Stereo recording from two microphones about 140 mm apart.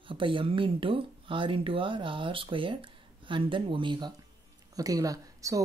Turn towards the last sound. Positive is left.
turn(degrees=-25)  # may be behind; listen again after turning